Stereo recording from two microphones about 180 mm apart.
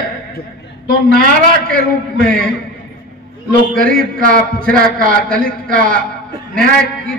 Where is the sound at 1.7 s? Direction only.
50° right (ahead or behind).